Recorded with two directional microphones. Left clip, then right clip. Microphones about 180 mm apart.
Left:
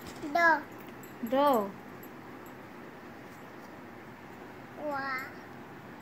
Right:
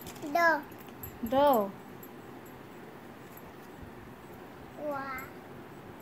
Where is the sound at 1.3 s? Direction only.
10° right (ahead or behind).